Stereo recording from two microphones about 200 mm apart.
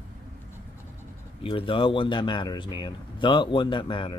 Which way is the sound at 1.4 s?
25° left (ahead or behind).